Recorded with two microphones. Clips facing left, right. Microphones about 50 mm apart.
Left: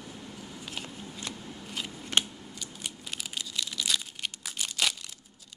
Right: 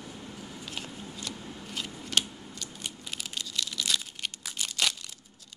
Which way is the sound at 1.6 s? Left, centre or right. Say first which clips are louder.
Even; centre.